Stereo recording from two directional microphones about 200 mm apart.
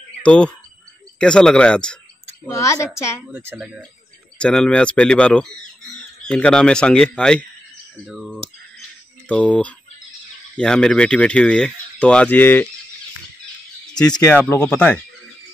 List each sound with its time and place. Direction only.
0.2 s speech: 5° left (ahead or behind)
2.4 s a woman's voice: 15° left (ahead or behind)
3.3 s a woman's voice: 10° right (ahead or behind); by 12.6 s 10° left (ahead or behind)
14.2 s a woman's voice: 10° left (ahead or behind)